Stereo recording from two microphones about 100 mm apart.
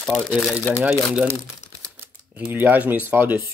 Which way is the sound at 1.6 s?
90° left.